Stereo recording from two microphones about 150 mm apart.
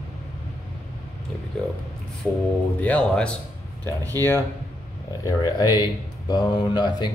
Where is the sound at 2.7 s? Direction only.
10° left (ahead or behind).